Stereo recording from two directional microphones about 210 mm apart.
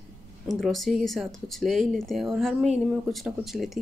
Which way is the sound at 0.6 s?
Centre (ahead or behind).